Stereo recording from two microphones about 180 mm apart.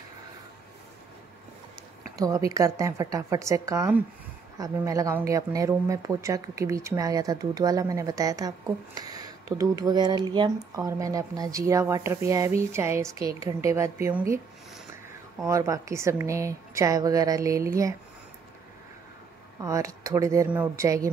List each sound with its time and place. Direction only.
2.1 s speech: 20° right (ahead or behind)
15.4 s speech: 15° right (ahead or behind)
19.6 s speech: 15° right (ahead or behind)